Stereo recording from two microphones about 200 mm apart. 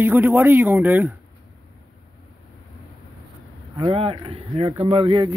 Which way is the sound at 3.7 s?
25° right (ahead or behind).